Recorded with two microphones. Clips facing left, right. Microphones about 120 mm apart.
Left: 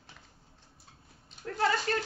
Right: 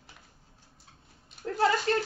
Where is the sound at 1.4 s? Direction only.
30° right (ahead or behind).